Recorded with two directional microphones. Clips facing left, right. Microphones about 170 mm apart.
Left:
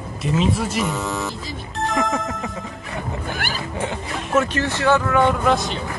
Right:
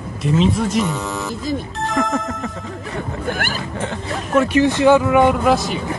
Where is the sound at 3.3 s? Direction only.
50° right (ahead or behind).